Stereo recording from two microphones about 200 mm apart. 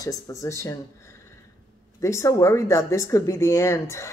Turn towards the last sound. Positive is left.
turn(degrees=15)  # may be behind; listen again after turning